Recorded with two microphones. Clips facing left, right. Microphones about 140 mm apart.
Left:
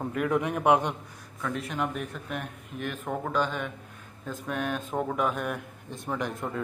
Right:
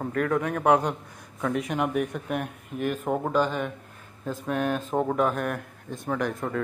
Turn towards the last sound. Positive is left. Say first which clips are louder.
# right 4 dB
turn(degrees=0)  # may be behind; listen again after turning